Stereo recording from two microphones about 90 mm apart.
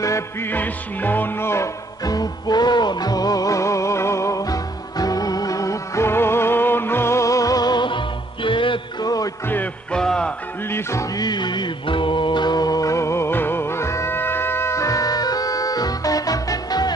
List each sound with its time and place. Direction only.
0.5 s music: 20° left (ahead or behind)
2.0 s music: 45° left (ahead or behind)
8.5 s music: 70° left (ahead or behind)
9.0 s music: 45° left (ahead or behind)
9.9 s music: 10° left (ahead or behind)
10.7 s music: 30° left (ahead or behind)
11.1 s music: 55° left (ahead or behind)